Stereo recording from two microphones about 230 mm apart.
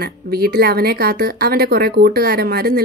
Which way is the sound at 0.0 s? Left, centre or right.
Right.